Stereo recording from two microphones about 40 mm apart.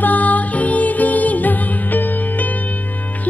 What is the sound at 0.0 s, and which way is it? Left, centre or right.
Music, left.